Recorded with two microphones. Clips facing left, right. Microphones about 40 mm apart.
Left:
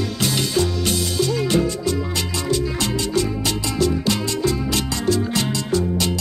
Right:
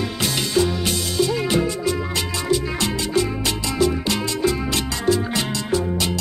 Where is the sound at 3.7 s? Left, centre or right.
Centre.